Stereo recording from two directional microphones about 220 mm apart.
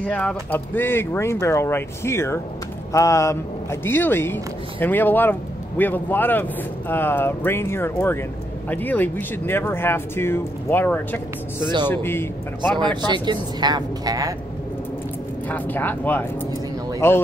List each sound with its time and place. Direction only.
0.0 s speech: 5° left (ahead or behind)
12.7 s speech: 20° right (ahead or behind)
15.4 s speech: 10° left (ahead or behind)